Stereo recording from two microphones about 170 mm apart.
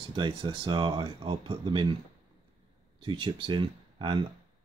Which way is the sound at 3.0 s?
30° right (ahead or behind).